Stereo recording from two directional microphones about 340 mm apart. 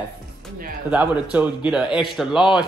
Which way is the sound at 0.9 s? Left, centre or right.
Centre.